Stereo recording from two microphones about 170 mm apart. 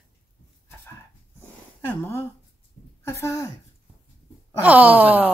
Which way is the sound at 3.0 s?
15° left (ahead or behind).